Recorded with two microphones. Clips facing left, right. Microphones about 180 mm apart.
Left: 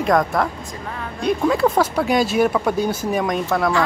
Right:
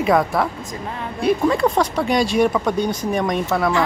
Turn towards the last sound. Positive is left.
turn(degrees=0)  # may be behind; listen again after turning